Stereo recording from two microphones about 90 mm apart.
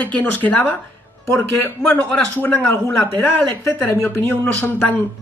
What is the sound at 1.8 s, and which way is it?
Speech, 10° left (ahead or behind).